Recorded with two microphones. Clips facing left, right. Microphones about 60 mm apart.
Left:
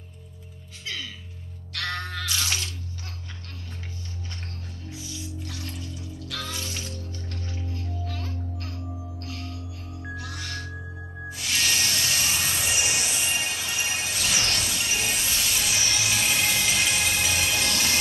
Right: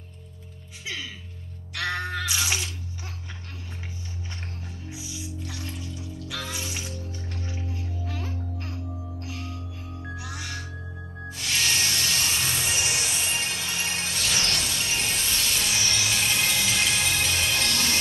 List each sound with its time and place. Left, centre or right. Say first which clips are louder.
1.7 s music: right 3 dB; centre
4.8 s music: even; centre
11.2 s music: even; centre